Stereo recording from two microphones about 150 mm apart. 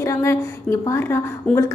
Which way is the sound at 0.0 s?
20° left (ahead or behind).